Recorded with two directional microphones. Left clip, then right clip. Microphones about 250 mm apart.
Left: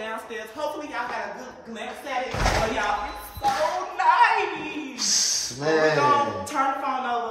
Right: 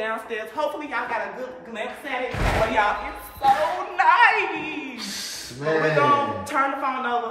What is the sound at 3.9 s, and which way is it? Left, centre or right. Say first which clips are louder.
A woman's voice: right 2 dB; centre.